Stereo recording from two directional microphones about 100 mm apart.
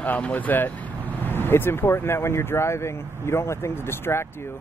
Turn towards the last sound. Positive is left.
turn(degrees=25)  # may be behind; listen again after turning